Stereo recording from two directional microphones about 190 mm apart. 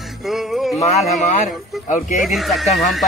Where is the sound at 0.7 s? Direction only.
35° left (ahead or behind).